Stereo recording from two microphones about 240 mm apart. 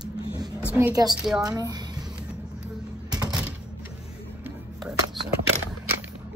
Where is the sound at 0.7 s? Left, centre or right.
Centre.